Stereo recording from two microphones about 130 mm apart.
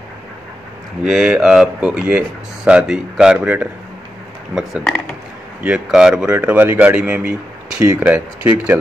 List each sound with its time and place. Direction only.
1.0 s speech: 5° right (ahead or behind)
5.6 s speech: 5° right (ahead or behind)